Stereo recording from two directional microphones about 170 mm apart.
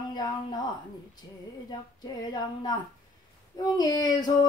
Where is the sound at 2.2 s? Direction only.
25° left (ahead or behind).